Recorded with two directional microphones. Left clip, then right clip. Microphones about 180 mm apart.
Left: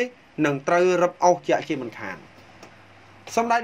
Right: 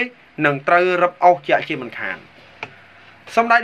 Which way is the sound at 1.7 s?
45° left (ahead or behind).